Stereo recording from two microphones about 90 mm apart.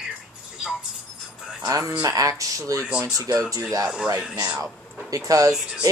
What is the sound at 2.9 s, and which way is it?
Speech, 10° right (ahead or behind).